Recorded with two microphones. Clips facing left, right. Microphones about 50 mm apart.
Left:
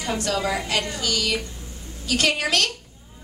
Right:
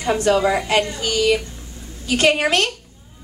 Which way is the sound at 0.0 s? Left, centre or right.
Right.